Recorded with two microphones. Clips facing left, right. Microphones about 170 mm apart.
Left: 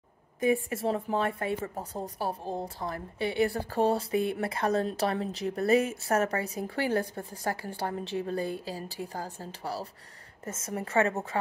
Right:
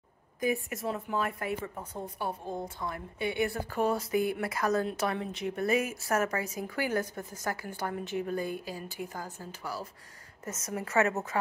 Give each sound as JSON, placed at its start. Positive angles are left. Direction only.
{"t": 0.4, "sound": "a woman's voice", "side_deg": 30}